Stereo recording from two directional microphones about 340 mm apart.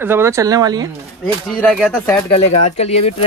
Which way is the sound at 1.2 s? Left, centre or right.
Centre.